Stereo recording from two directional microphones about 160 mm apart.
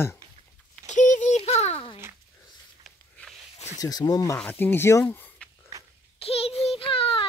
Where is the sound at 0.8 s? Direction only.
50° left (ahead or behind).